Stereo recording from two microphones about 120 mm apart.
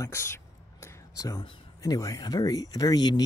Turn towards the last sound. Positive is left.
turn(degrees=35)  # may be behind; listen again after turning